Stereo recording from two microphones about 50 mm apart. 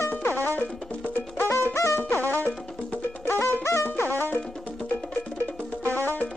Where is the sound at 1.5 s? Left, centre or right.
Left.